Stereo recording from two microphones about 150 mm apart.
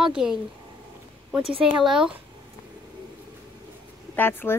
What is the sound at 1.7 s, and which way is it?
Speech, 5° right (ahead or behind).